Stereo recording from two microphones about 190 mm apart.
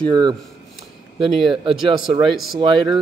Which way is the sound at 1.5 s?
25° right (ahead or behind).